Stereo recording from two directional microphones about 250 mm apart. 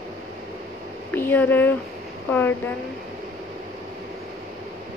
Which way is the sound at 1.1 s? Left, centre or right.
Centre.